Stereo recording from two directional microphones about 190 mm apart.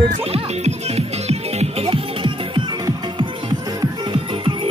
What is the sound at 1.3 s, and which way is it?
Music, 30° right (ahead or behind).